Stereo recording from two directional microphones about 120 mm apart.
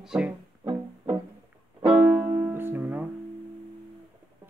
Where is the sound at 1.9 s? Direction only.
15° right (ahead or behind).